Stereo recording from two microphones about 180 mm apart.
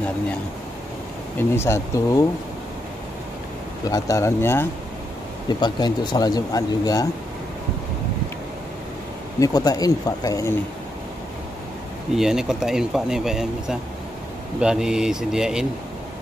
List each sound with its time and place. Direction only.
1.5 s speech: 15° left (ahead or behind)
3.8 s speech: 20° left (ahead or behind)
5.5 s speech: 25° left (ahead or behind)
9.4 s speech: 20° left (ahead or behind)
12.2 s speech: centre (ahead or behind)